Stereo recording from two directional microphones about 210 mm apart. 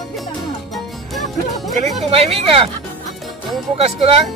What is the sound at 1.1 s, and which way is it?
Music, centre (ahead or behind).